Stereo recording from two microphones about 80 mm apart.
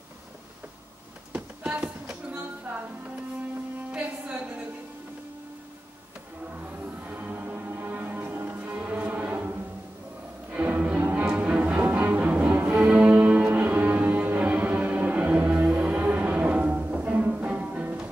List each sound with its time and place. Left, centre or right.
1.6 s a sound: centre
3.9 s music: centre
7.1 s music: right